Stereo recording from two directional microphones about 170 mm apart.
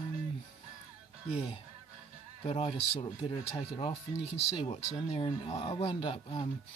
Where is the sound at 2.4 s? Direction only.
35° left (ahead or behind).